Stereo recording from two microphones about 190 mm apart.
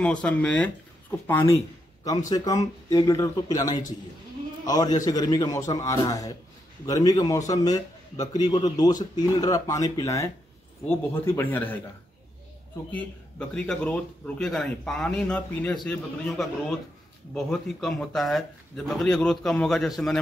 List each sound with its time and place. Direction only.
0.0 s a man's voice: 5° left (ahead or behind)
12.9 s a man's voice: 5° left (ahead or behind)